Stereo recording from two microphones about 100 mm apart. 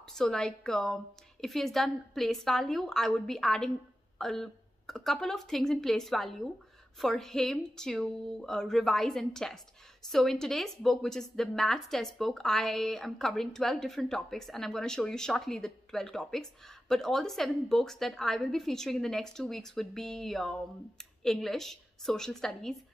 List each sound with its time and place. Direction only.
0.1 s a woman's voice: 5° left (ahead or behind)